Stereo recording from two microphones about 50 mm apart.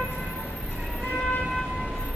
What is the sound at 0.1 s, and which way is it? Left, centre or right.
Vehicle, centre.